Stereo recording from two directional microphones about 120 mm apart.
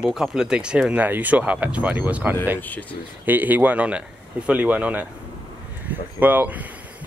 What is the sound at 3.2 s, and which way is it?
A man's voice, 15° right (ahead or behind).